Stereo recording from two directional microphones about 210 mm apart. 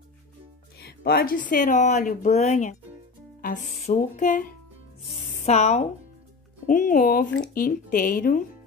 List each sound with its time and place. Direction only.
0.7 s speech: 50° left (ahead or behind)